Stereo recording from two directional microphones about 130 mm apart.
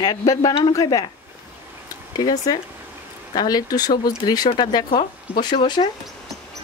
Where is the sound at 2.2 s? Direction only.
30° left (ahead or behind).